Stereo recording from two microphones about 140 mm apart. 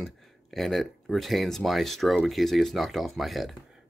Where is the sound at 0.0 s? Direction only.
Centre (ahead or behind).